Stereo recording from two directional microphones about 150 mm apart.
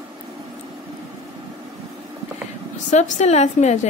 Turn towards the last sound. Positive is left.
turn(degrees=50)  # may be behind; listen again after turning